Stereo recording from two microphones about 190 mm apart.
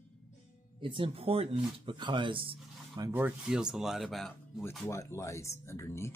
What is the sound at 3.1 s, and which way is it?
Speech, 5° right (ahead or behind).